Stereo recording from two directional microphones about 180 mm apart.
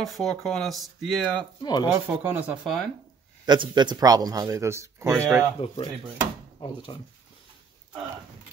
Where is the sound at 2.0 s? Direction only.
15° right (ahead or behind).